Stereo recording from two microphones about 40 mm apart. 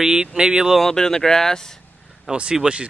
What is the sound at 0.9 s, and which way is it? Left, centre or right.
Speech, centre.